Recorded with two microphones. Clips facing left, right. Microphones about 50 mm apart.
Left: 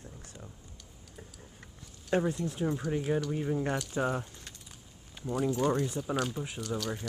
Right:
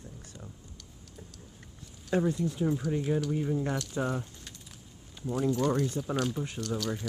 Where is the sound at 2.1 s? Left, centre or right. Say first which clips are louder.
Even; left.